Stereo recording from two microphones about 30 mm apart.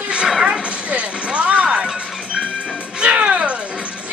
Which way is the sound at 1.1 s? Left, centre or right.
Right.